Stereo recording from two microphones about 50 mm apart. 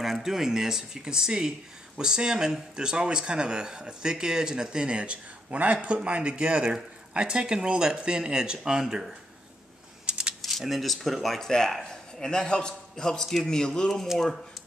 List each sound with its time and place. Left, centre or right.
0.0 s speech: centre
10.0 s coin: centre
10.4 s speech: centre